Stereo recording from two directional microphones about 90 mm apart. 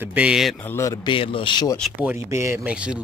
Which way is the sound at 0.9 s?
65° left (ahead or behind).